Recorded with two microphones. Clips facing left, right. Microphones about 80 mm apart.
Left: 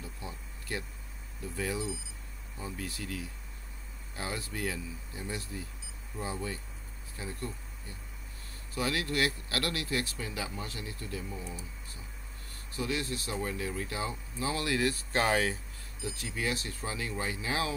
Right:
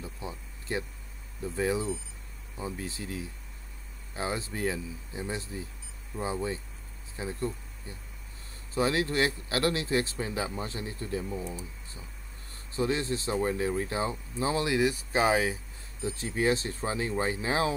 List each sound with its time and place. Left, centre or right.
0.0 s a sound: right
1.4 s speech: right
8.7 s speech: right
12.7 s speech: right; by 15.6 s centre
16.0 s speech: right